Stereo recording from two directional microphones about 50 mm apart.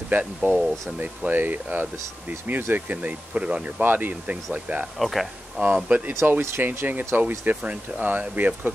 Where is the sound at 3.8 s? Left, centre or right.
Right.